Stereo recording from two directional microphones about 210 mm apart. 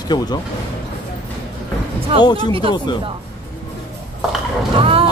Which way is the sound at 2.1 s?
25° right (ahead or behind).